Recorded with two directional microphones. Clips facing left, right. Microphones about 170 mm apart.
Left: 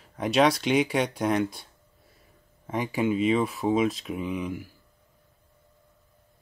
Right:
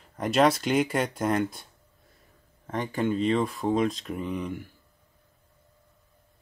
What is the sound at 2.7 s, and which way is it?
Speech, 10° left (ahead or behind).